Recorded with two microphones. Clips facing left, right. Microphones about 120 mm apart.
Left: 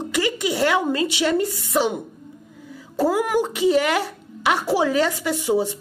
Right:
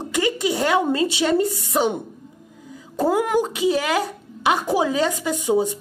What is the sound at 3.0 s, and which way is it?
A woman's voice, 20° right (ahead or behind).